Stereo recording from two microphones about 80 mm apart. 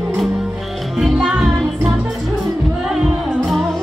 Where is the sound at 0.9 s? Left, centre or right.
Centre.